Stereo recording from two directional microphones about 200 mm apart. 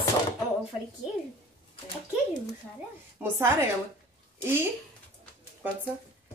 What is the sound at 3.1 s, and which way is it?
Speech, 10° right (ahead or behind).